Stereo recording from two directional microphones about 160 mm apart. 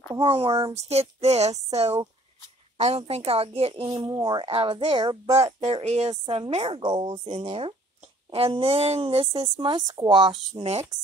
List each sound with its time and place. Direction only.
0.1 s speech: 30° right (ahead or behind)
5.4 s speech: 40° right (ahead or behind)
10.6 s speech: 40° right (ahead or behind)